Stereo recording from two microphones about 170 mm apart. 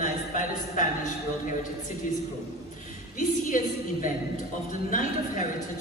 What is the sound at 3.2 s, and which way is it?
A man's voice, 50° left (ahead or behind).